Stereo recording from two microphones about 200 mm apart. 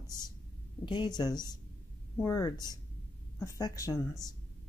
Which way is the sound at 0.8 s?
20° left (ahead or behind).